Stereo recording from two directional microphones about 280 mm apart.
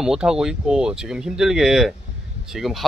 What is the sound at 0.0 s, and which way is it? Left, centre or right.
Speech, centre.